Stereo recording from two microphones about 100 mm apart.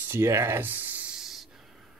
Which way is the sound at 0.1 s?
25° right (ahead or behind).